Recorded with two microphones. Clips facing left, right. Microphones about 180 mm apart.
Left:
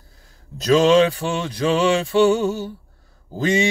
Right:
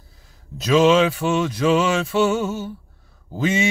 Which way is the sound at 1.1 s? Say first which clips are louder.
Right 4 dB; 35° left (ahead or behind).